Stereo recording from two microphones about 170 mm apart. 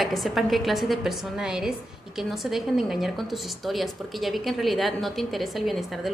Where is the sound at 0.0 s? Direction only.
Centre (ahead or behind).